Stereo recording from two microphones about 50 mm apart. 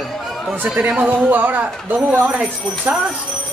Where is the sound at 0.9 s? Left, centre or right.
Right.